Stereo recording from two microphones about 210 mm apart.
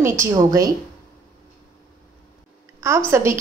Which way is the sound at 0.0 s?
15° right (ahead or behind).